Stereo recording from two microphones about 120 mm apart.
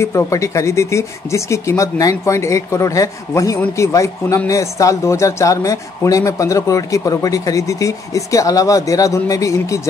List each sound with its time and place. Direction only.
0.0 s speech: 25° left (ahead or behind)